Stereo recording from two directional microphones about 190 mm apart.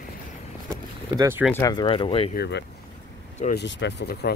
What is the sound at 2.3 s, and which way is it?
Speech, 60° left (ahead or behind).